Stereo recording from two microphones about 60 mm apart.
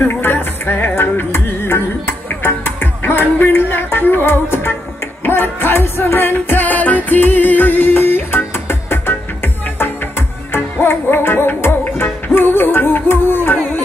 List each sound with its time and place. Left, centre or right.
0.0 s music: left
10.5 s music: left